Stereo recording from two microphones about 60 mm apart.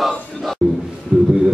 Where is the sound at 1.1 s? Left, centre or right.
Centre.